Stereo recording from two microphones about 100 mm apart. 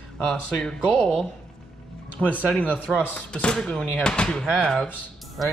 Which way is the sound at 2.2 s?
Centre (ahead or behind).